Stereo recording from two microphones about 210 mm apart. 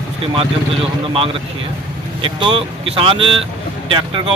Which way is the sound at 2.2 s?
25° right (ahead or behind).